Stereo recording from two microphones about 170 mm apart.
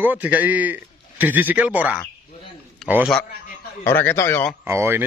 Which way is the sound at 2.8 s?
5° left (ahead or behind).